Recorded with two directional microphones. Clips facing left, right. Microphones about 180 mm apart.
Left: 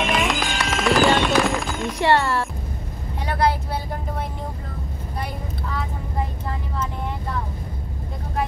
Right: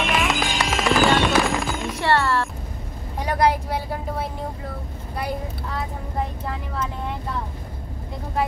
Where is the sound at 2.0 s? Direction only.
15° left (ahead or behind).